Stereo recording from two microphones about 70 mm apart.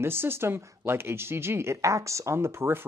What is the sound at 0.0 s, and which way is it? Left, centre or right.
Speech, right.